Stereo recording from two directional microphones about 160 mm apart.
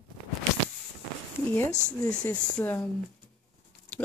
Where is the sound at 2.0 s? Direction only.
5° left (ahead or behind).